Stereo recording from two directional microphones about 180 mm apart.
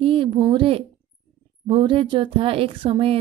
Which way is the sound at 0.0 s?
30° right (ahead or behind).